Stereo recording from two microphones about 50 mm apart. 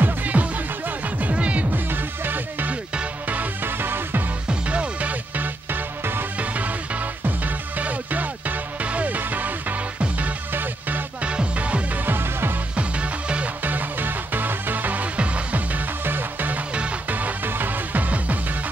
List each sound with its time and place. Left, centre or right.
0.0 s music: right
1.7 s music: right
2.7 s music: right
3.6 s music: right
4.5 s music: right
5.7 s music: right
7.2 s music: right
11.2 s music: right
12.1 s music: right
12.7 s music: right
13.7 s music: right